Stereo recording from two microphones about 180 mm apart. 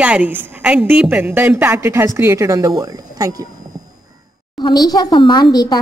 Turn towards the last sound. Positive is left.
turn(degrees=25)  # may be behind; listen again after turning